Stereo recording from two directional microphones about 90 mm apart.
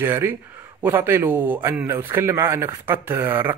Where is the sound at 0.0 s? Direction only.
30° right (ahead or behind).